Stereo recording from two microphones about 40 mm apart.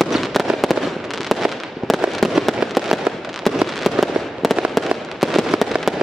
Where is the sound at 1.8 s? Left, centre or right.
Centre.